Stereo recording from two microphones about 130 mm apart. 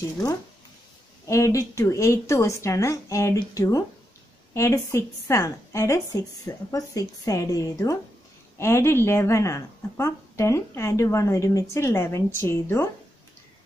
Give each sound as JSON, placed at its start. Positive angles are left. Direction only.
{"t": 1.2, "sound": "speech", "side_deg": 25}